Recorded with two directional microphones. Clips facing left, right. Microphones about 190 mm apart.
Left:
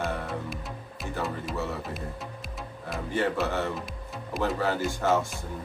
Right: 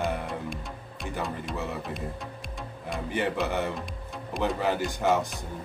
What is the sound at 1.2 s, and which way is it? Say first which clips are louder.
Speech: left 1 dB; centre (ahead or behind).